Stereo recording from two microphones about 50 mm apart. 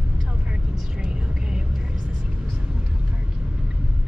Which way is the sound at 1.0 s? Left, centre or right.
Centre.